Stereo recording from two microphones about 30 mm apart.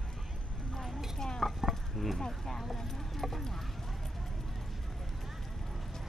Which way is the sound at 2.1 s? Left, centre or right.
Centre.